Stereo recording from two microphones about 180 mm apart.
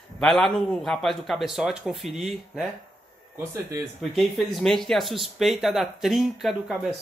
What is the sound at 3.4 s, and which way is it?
Speech, 15° right (ahead or behind).